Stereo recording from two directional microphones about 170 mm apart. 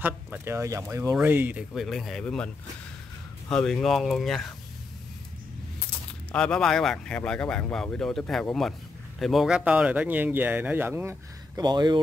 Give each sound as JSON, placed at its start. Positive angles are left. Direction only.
{"t": 0.0, "sound": "speech", "side_deg": -10}
{"t": 1.7, "sound": "speech", "side_deg": 0}
{"t": 6.3, "sound": "speech", "side_deg": 5}